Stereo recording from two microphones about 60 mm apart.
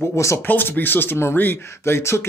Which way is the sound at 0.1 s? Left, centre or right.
Left.